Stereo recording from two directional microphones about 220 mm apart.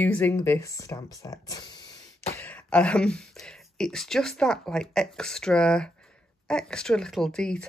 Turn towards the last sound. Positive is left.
turn(degrees=5)  # may be behind; listen again after turning